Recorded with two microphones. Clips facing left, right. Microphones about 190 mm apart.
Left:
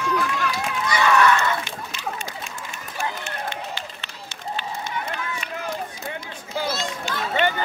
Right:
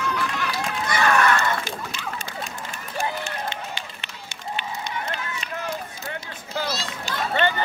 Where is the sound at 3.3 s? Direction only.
20° right (ahead or behind).